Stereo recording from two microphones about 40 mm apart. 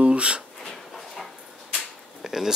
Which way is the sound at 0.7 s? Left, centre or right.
Centre.